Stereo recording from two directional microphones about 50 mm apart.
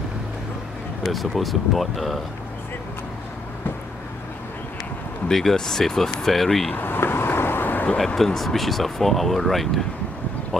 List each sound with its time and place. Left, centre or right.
1.0 s speech: centre
5.3 s speech: centre
6.7 s vehicle: left
8.2 s speech: centre